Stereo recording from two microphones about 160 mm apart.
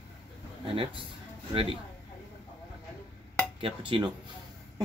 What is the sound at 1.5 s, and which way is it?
Speech, 35° right (ahead or behind).